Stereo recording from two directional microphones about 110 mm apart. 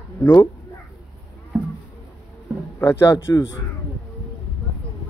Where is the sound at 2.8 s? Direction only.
25° left (ahead or behind).